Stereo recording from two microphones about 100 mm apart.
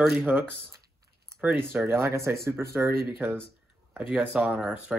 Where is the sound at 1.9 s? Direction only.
25° right (ahead or behind).